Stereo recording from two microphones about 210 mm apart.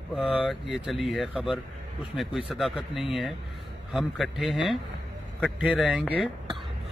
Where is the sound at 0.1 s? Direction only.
5° right (ahead or behind).